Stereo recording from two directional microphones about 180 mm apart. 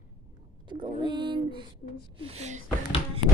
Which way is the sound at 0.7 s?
30° right (ahead or behind).